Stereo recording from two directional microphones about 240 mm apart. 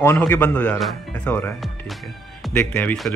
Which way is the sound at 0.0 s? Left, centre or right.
Centre.